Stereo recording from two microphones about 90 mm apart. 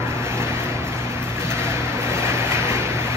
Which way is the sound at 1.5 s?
30° right (ahead or behind).